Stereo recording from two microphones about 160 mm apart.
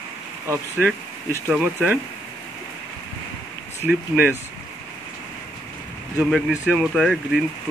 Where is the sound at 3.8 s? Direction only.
10° right (ahead or behind).